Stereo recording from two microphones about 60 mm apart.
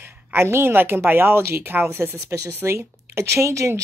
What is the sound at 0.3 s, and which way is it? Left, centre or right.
Speech, right.